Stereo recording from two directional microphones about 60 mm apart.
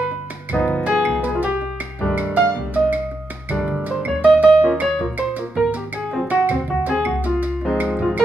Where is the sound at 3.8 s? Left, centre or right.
Right.